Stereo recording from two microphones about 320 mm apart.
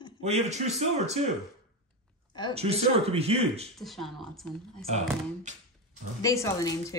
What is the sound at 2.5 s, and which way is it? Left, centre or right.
Speech, centre.